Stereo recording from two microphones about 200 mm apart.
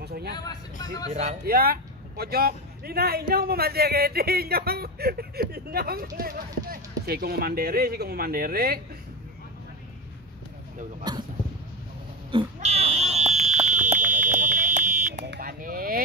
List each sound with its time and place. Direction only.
0.0 s vehicle: 55° right (ahead or behind)
0.5 s speech: 20° left (ahead or behind)
1.4 s speech: 50° right (ahead or behind)
11.1 s speech: 20° right (ahead or behind)
12.5 s fire alarm: 30° right (ahead or behind)
15.2 s a sound: 50° right (ahead or behind)